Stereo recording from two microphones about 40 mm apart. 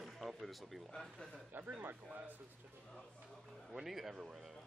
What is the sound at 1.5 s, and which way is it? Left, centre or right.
Speech, right.